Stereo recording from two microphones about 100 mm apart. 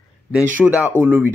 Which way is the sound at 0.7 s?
15° right (ahead or behind).